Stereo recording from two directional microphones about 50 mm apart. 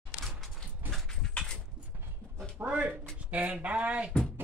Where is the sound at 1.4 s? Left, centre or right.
Left.